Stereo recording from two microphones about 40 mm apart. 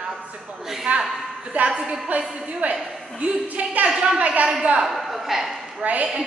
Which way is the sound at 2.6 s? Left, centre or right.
Right.